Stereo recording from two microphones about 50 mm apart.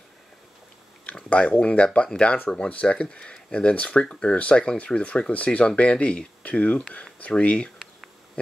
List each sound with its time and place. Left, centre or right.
1.3 s speech: left